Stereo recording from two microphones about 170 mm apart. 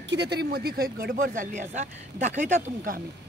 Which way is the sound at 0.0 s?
85° right.